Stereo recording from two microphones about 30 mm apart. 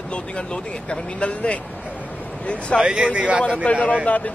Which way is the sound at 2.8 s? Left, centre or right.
Right.